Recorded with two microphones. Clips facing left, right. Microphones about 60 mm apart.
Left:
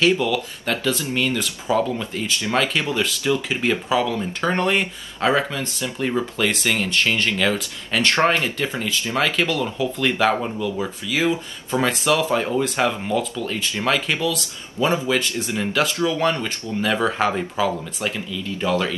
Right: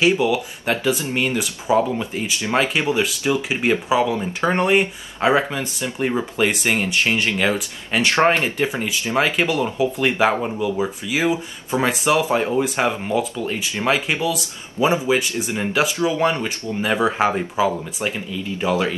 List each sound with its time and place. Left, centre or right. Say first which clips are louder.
0.0 s speech: right 1 dB; centre
8.2 s speech: right 5 dB; right